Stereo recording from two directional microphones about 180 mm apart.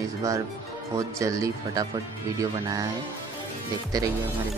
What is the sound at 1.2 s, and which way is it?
Speech, 20° right (ahead or behind).